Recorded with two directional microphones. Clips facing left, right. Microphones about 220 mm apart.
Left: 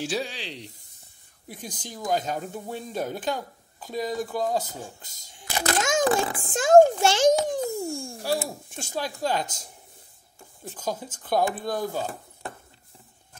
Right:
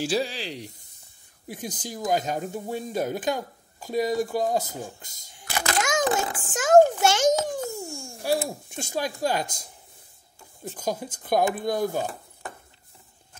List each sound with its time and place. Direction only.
0.0 s speech: centre (ahead or behind); by 5.1 s 15° right (ahead or behind)
5.3 s a child's voice: 25° left (ahead or behind)
7.9 s a sound: 35° left (ahead or behind)
8.8 s speech: 15° right (ahead or behind)
10.8 s speech: 15° right (ahead or behind)